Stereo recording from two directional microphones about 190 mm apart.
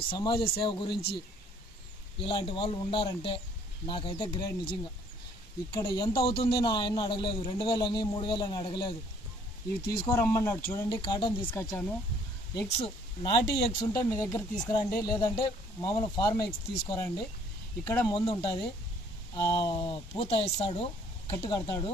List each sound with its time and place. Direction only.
0.1 s speech: 25° left (ahead or behind)
2.1 s speech: 30° left (ahead or behind)
9.9 s speech: 15° left (ahead or behind)
12.6 s speech: 35° left (ahead or behind)
18.0 s speech: 20° left (ahead or behind)